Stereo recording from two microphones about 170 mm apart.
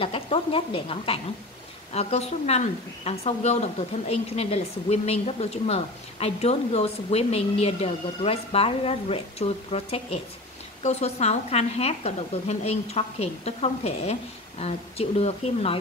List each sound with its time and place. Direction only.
0.0 s a woman's voice: 30° left (ahead or behind)